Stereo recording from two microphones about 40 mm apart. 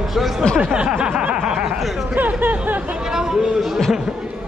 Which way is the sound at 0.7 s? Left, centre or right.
Right.